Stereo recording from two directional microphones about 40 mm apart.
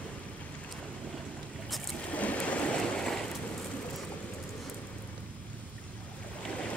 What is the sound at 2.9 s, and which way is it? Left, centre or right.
Waves, centre.